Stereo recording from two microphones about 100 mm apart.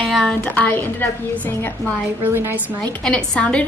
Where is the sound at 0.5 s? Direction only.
15° left (ahead or behind).